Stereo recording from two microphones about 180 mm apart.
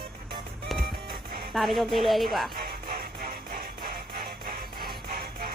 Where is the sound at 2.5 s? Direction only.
55° right (ahead or behind).